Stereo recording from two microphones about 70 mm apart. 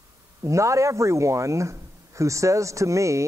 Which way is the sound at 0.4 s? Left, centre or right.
Right.